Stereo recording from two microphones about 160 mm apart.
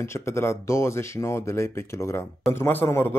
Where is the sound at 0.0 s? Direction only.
15° left (ahead or behind).